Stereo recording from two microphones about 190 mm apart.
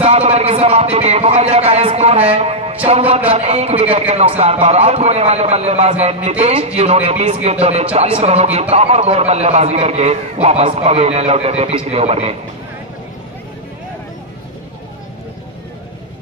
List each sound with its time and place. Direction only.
0.0 s speech: 35° right (ahead or behind)